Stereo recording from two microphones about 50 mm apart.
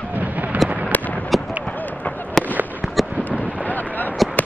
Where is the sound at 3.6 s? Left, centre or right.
Left.